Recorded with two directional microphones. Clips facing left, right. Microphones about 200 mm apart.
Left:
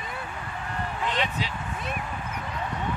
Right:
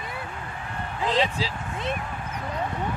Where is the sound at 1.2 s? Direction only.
30° right (ahead or behind).